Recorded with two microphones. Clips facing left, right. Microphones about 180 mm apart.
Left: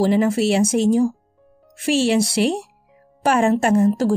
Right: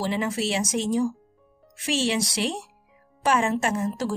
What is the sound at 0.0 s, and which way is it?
Speech, 50° left (ahead or behind).